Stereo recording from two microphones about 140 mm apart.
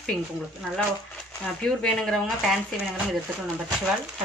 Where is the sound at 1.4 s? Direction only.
5° left (ahead or behind).